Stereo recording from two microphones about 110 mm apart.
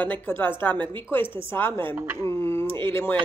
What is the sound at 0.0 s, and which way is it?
Speech, 15° left (ahead or behind).